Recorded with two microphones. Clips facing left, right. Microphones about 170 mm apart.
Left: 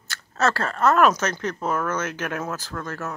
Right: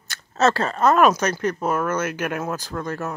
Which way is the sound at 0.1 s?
20° right (ahead or behind).